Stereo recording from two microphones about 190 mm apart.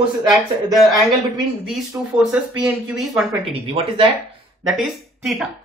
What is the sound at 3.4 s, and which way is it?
Speech, 30° right (ahead or behind).